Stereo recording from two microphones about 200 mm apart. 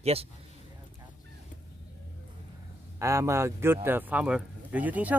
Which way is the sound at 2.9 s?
15° right (ahead or behind).